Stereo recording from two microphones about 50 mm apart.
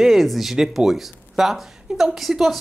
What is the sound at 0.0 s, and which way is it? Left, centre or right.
Speech, centre.